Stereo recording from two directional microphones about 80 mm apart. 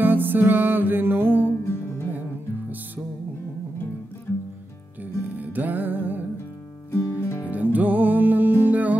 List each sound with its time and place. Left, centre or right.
0.0 s music: right
5.3 s music: right
6.9 s music: left
7.5 s music: right